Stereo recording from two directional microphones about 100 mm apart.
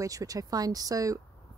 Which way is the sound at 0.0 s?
35° right (ahead or behind).